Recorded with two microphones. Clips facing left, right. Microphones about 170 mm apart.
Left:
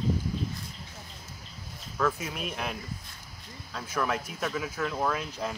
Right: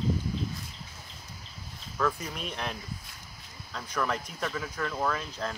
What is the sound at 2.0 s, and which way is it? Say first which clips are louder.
Speech: left 1 dB; 5° left (ahead or behind).